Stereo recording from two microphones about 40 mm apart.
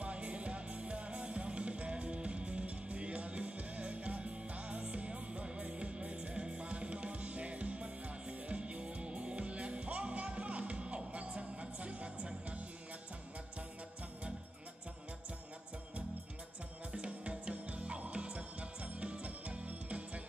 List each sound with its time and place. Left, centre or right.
0.0 s music: right
16.9 s music: right